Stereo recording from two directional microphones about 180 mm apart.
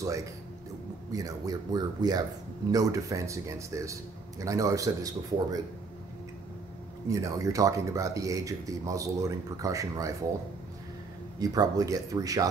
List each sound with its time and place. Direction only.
0.0 s speech: 20° right (ahead or behind)
7.1 s speech: 20° right (ahead or behind)
11.3 s speech: 20° right (ahead or behind)